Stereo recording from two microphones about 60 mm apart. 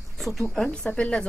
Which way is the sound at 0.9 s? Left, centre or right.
Centre.